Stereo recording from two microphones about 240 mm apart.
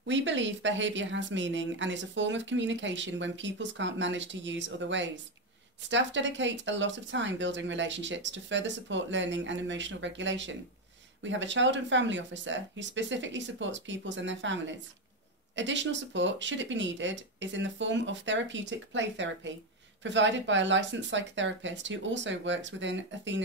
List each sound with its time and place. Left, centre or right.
0.0 s speech: right